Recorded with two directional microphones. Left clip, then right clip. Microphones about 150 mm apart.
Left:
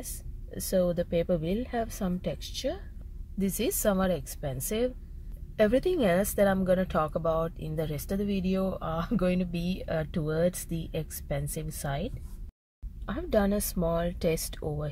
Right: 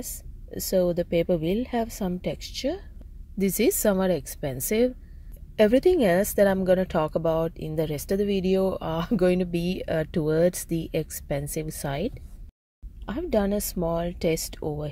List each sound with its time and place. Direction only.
0.0 s a woman's voice: 20° right (ahead or behind)
3.3 s a woman's voice: 30° right (ahead or behind)
13.0 s a woman's voice: 15° right (ahead or behind)